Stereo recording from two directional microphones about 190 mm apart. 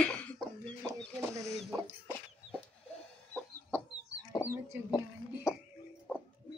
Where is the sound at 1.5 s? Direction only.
Centre (ahead or behind).